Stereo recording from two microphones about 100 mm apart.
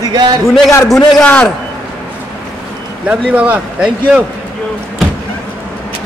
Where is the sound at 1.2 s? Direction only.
15° left (ahead or behind).